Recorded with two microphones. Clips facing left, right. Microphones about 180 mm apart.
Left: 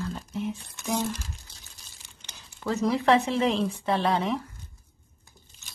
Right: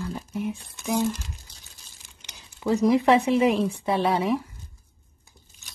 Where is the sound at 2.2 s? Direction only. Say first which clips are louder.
Right 1 dB; 15° right (ahead or behind).